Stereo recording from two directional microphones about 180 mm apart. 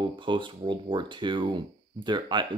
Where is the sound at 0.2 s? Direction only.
25° right (ahead or behind).